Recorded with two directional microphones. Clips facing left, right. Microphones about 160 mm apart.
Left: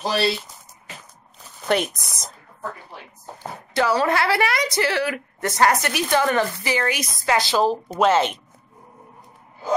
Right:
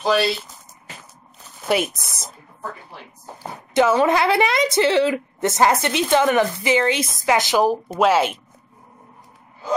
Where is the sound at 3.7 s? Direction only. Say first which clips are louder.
Right 4 dB; 20° right (ahead or behind).